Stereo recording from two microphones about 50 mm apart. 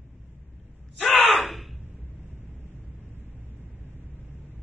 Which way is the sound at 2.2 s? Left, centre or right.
Right.